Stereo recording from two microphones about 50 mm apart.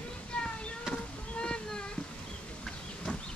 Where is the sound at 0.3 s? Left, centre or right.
Left.